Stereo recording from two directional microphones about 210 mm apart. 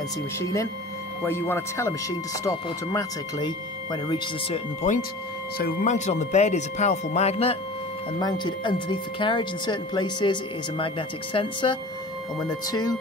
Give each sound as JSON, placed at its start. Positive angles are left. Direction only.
{"t": 0.4, "sound": "speech", "side_deg": 15}
{"t": 5.6, "sound": "speech", "side_deg": 45}